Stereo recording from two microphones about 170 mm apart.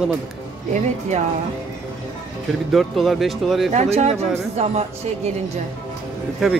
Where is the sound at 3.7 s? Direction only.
40° right (ahead or behind).